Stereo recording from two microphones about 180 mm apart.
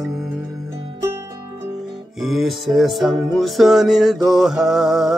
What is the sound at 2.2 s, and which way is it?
Music, centre (ahead or behind).